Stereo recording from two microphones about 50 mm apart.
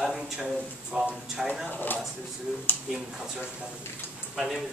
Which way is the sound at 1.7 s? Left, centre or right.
Left.